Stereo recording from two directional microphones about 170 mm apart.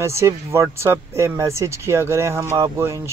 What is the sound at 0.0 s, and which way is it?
Speech, 15° right (ahead or behind).